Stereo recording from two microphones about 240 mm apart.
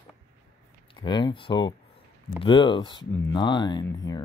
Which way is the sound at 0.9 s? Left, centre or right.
Centre.